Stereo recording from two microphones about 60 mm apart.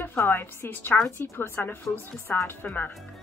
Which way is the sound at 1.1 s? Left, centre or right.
Left.